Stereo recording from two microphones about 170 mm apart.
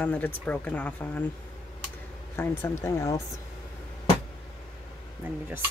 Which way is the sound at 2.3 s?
15° left (ahead or behind).